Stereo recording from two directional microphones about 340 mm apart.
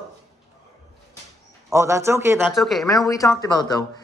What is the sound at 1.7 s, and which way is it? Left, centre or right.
Speech, centre.